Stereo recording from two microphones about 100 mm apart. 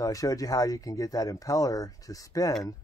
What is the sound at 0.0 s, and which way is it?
Speech, 35° left (ahead or behind).